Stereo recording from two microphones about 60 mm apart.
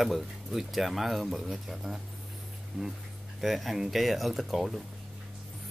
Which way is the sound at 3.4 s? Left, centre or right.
Centre.